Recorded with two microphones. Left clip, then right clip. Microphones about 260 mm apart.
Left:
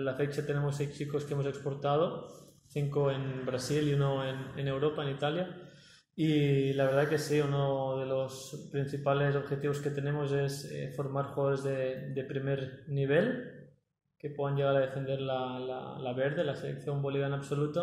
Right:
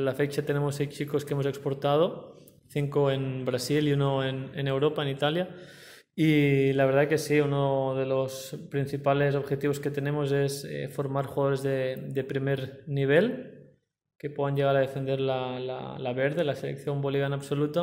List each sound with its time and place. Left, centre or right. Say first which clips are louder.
0.0 s speech: right 5 dB; right
6.1 s speech: right 6 dB; right
14.4 s speech: right 4 dB; right